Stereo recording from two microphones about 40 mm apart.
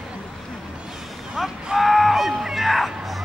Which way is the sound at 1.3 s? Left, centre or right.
Centre.